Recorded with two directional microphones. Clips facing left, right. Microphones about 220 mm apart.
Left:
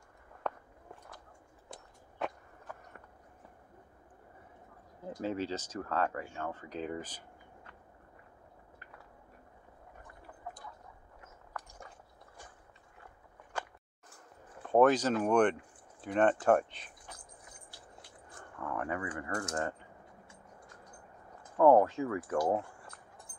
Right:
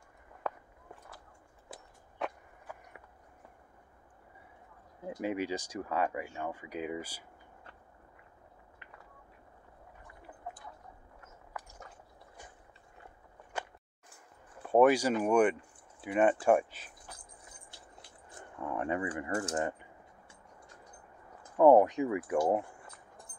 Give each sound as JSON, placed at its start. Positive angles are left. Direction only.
{"t": 0.4, "sound": "a sound", "side_deg": -5}
{"t": 1.7, "sound": "biting", "side_deg": 0}
{"t": 2.6, "sound": "a sound", "side_deg": -10}
{"t": 5.0, "sound": "speech", "side_deg": -15}
{"t": 11.6, "sound": "a sound", "side_deg": -5}
{"t": 14.6, "sound": "speech", "side_deg": -10}
{"t": 18.4, "sound": "keys jangling", "side_deg": -20}
{"t": 19.5, "sound": "speech", "side_deg": -15}
{"t": 21.5, "sound": "speech", "side_deg": -15}